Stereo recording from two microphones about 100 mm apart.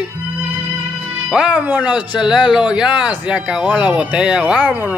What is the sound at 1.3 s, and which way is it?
Speech, 10° right (ahead or behind).